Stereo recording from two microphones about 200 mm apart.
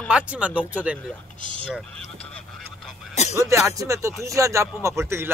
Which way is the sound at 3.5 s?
15° right (ahead or behind).